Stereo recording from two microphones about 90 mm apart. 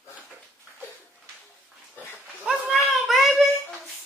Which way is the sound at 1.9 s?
20° left (ahead or behind).